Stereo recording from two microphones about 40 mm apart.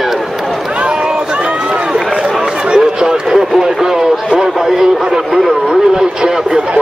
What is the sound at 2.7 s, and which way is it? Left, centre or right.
Run, centre.